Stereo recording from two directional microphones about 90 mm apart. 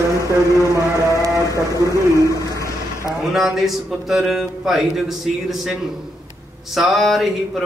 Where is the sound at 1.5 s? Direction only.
40° left (ahead or behind).